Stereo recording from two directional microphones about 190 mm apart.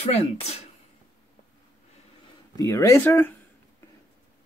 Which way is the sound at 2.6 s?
15° left (ahead or behind).